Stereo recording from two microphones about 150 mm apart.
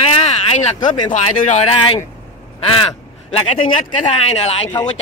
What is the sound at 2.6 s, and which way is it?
Crow, 35° left (ahead or behind).